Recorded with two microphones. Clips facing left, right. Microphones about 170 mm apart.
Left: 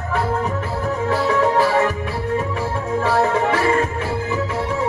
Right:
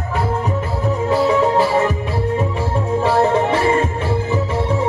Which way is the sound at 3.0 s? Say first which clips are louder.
Right 2 dB; 25° right (ahead or behind).